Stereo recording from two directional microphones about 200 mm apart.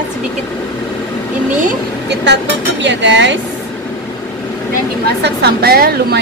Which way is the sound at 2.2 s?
60° right (ahead or behind).